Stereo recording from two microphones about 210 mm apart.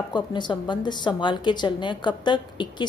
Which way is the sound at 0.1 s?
20° left (ahead or behind).